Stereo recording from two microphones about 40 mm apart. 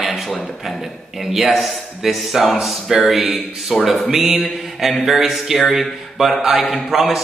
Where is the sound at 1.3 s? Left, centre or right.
Centre.